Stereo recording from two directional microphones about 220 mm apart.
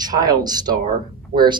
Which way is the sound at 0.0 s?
15° right (ahead or behind).